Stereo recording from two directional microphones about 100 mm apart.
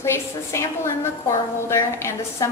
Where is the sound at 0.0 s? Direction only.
30° left (ahead or behind).